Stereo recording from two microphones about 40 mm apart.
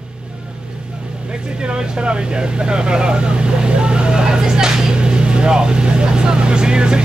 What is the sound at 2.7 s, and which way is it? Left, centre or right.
Speech, right.